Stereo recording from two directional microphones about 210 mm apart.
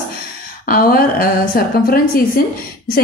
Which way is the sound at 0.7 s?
45° left (ahead or behind).